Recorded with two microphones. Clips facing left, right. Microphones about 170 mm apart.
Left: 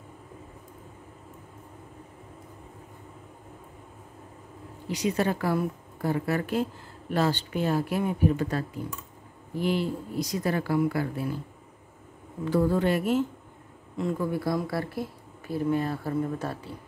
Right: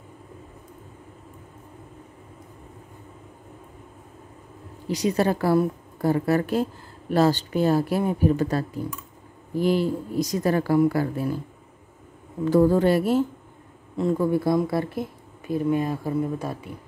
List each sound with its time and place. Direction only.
4.8 s a woman's voice: 40° right (ahead or behind)
12.4 s a woman's voice: 40° right (ahead or behind)
14.3 s speech: 25° right (ahead or behind)